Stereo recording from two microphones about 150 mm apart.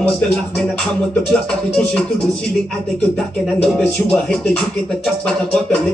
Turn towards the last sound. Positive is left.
turn(degrees=5)  # may be behind; listen again after turning